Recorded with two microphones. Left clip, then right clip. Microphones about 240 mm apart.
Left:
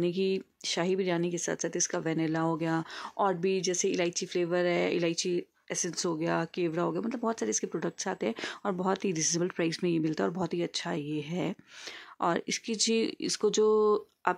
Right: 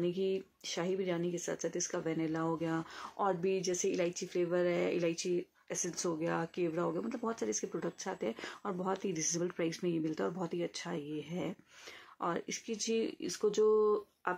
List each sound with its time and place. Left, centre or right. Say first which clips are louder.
0.0 s speech: left 5 dB; left